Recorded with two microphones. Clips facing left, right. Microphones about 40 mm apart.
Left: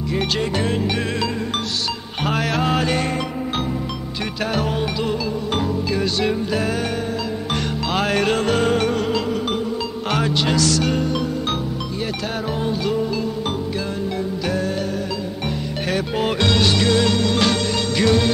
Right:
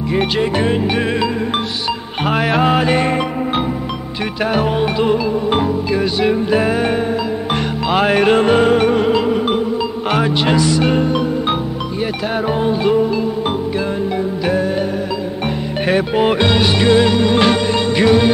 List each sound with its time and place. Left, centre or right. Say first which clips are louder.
0.1 s music: right 6 dB; right
4.6 s music: right 7 dB; right
7.9 s music: right 7 dB; centre
12.6 s music: right 7 dB; right
15.9 s music: right 7 dB; right